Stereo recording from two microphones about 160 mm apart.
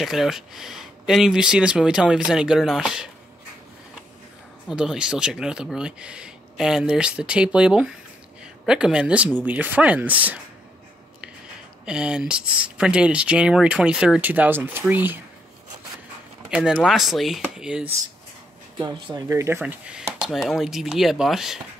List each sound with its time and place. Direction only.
0.0 s speech: centre (ahead or behind)
4.6 s speech: 5° right (ahead or behind)
11.8 s speech: 5° right (ahead or behind)
16.4 s speech: 5° right (ahead or behind)
18.8 s speech: 25° right (ahead or behind)
19.6 s speech: 5° right (ahead or behind)